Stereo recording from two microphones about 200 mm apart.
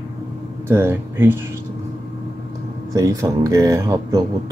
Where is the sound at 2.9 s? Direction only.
15° right (ahead or behind).